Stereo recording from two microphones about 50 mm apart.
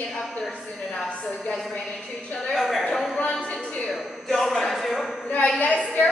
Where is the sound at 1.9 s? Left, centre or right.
Centre.